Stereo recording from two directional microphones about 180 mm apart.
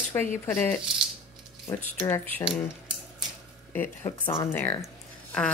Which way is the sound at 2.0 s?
10° left (ahead or behind).